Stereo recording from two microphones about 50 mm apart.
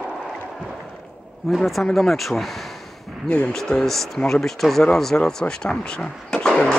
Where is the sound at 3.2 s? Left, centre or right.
Left.